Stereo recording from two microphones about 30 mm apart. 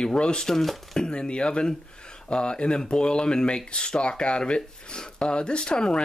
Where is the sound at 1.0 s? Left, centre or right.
Left.